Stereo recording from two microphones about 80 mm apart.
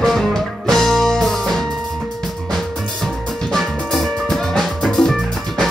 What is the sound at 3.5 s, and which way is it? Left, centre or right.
Music, centre.